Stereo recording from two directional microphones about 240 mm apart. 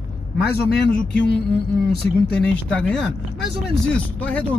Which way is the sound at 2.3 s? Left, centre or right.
Centre.